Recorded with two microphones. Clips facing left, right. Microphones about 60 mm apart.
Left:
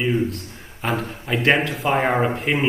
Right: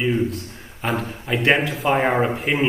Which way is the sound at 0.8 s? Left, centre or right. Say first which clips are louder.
Even; centre.